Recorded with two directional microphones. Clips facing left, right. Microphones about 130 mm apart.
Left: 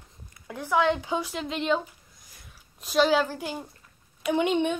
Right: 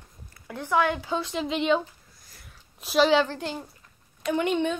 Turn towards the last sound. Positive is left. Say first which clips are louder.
# left 1 dB
turn(degrees=15)  # may be behind; listen again after turning